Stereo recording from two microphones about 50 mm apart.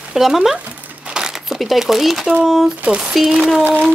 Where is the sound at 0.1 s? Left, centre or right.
Centre.